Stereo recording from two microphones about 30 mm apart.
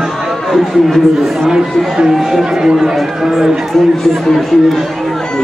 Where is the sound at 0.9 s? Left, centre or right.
Centre.